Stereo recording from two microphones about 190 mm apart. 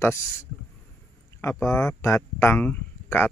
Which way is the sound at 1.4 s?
15° left (ahead or behind).